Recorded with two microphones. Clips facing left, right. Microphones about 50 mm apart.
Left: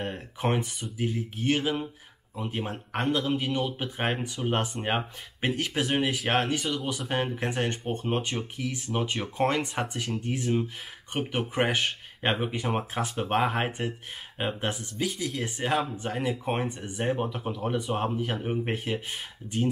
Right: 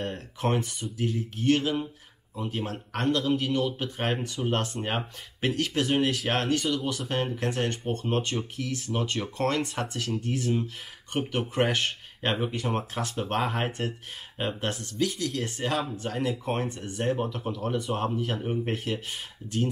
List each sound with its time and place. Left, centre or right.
0.0 s speech: centre